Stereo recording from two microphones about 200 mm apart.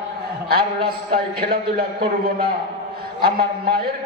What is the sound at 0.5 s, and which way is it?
A man's voice, 50° right (ahead or behind).